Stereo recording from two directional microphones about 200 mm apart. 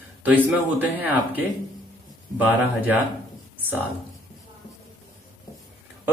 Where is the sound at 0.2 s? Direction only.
10° right (ahead or behind).